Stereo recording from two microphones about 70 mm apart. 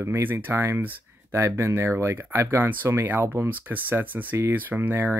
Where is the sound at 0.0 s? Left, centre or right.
Right.